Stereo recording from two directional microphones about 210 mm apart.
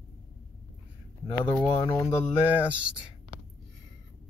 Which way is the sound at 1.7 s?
10° left (ahead or behind).